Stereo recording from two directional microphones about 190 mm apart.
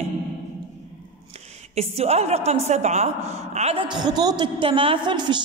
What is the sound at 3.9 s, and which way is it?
A woman's voice, 20° right (ahead or behind).